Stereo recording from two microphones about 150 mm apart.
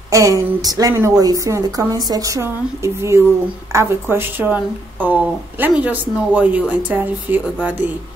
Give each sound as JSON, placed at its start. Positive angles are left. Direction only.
{"t": 0.1, "sound": "a woman's voice", "side_deg": -20}